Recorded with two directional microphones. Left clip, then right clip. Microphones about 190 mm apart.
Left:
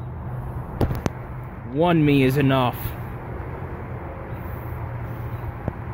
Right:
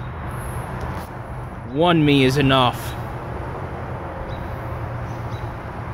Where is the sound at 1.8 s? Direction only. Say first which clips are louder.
Right 3 dB; 5° left (ahead or behind).